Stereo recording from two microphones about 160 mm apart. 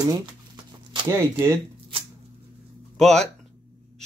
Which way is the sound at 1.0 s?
15° right (ahead or behind).